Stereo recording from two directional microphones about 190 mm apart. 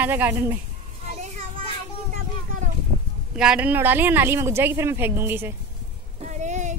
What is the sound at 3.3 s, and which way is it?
A woman's voice, 5° right (ahead or behind).